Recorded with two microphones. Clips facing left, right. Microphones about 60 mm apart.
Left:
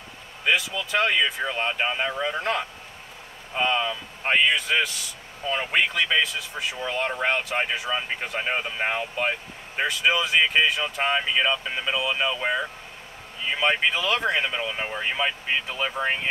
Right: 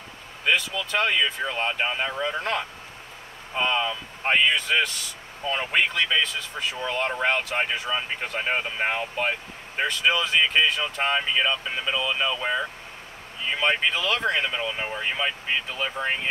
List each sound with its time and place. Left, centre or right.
0.5 s speech: centre